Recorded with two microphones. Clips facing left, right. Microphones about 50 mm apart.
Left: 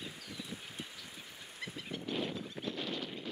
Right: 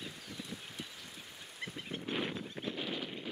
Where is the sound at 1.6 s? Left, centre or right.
Right.